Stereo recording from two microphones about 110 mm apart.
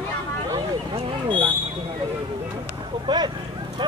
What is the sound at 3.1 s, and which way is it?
Speech, 40° right (ahead or behind).